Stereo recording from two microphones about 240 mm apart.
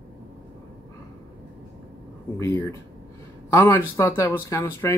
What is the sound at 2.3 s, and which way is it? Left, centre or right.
Speech, centre.